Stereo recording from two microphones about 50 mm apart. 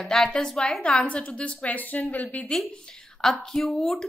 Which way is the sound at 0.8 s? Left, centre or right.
Left.